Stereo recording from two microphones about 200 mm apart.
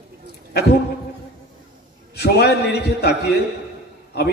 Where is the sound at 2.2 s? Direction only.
55° left (ahead or behind).